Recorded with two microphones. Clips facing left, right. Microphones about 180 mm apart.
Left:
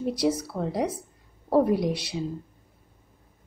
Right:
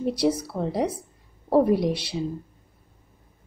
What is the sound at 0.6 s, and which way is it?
A woman's voice, 25° right (ahead or behind).